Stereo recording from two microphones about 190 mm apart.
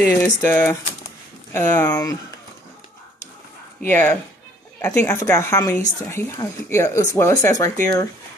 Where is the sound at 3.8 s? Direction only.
10° left (ahead or behind).